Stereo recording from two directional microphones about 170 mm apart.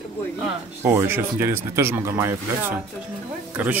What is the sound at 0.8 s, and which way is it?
Speech, 15° right (ahead or behind).